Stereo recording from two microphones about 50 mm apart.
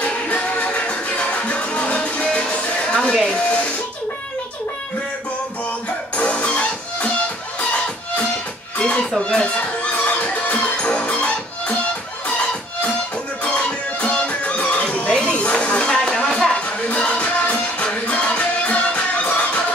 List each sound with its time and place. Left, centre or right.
0.0 s music: left
6.1 s music: left
8.7 s music: left
13.4 s music: left
15.1 s a sound: centre
15.5 s music: centre
16.9 s music: left